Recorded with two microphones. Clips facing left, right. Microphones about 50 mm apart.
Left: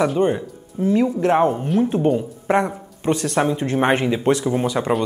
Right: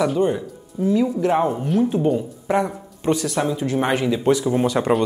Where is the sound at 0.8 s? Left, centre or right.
Left.